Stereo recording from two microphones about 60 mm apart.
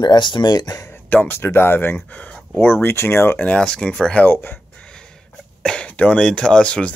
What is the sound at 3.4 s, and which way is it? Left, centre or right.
Speech, centre.